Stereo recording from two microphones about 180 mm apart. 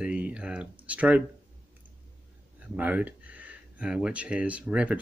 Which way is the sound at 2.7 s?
10° right (ahead or behind).